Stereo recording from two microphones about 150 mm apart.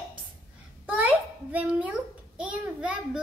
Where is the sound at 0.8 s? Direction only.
10° right (ahead or behind).